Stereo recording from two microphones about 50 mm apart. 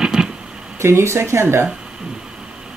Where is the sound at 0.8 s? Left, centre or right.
Right.